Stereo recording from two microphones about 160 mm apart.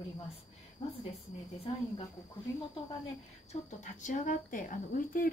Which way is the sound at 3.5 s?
50° left (ahead or behind).